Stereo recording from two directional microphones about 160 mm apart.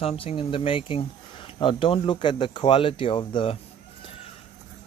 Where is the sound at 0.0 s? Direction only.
40° left (ahead or behind).